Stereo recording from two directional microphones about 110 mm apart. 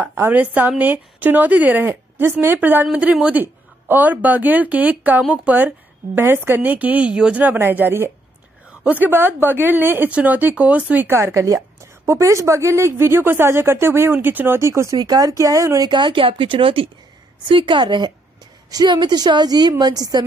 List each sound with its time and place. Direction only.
0.0 s a woman's voice: 20° right (ahead or behind)
15.9 s a woman's voice: 50° right (ahead or behind)